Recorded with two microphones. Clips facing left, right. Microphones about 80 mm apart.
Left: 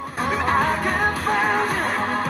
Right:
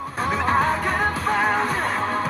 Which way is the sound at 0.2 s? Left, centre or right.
Right.